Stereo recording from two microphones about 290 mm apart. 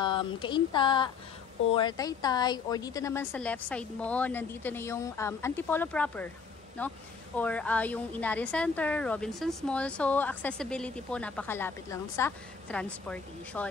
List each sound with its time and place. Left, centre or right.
0.0 s a woman's voice: centre